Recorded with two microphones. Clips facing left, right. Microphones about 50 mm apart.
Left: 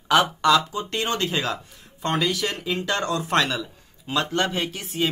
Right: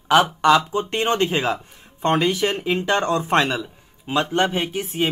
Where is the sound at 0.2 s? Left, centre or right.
Right.